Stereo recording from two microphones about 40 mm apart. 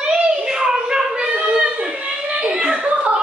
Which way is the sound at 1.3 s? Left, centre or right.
Right.